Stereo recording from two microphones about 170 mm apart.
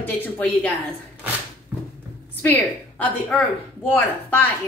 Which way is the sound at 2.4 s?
10° left (ahead or behind).